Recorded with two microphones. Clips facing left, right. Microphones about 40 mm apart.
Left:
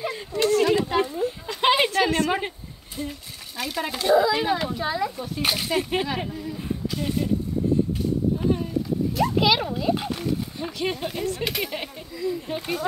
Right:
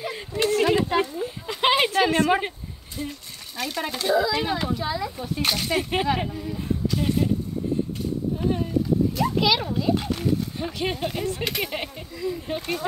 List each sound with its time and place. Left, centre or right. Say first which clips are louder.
0.1 s a sound: left 1 dB; centre
3.0 s speech: even; centre
5.1 s speech: right 1 dB; centre
5.4 s speech: even; centre
5.7 s speech: right 1 dB; centre
9.1 s a child's voice: left 1 dB; centre
10.8 s speech: even; centre
11.4 s speech: even; centre
11.7 s speech: right 1 dB; centre